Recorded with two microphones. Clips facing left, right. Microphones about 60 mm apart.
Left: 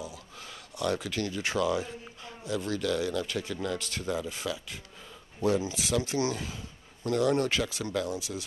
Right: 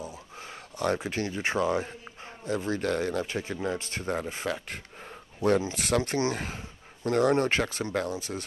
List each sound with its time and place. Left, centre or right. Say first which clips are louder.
0.9 s speech: right 1 dB; right